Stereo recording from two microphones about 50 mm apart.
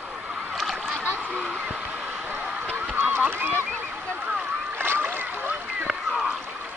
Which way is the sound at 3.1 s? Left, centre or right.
Right.